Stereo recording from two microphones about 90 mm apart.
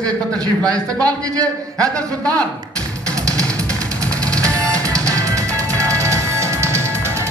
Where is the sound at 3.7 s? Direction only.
10° left (ahead or behind).